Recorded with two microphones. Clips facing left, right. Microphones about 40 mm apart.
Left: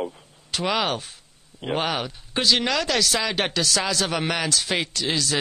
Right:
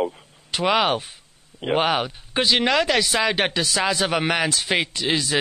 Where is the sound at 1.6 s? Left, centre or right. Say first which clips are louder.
Right 5 dB; right.